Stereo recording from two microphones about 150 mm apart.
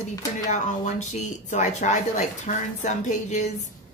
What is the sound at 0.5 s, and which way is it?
Speech, 55° left (ahead or behind).